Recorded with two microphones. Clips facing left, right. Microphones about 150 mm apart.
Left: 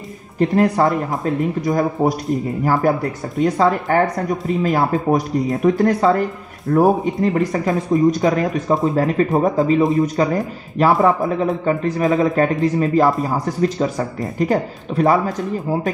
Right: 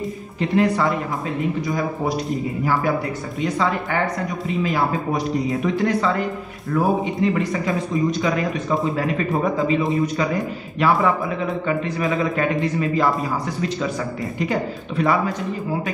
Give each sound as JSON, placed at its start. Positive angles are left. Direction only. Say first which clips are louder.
{"t": 0.4, "sound": "speech", "louder": "left 4 dB", "side_deg": 45}
{"t": 14.4, "sound": "speech", "louder": "left 5 dB", "side_deg": 40}